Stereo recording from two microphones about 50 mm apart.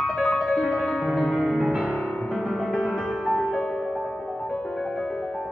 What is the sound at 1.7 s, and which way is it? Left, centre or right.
Music, right.